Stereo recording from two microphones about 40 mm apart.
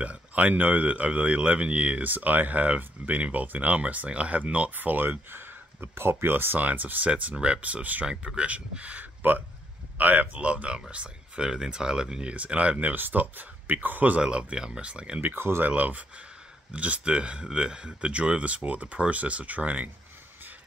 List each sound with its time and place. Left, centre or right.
0.0 s speech: right
4.7 s speech: right
7.1 s speech: right
7.3 s speech: right
7.6 s speech: right
9.2 s speech: right
9.9 s speech: right
10.4 s speech: right
12.4 s speech: right
12.7 s speech: right
14.2 s speech: centre
15.3 s speech: right
15.6 s speech: right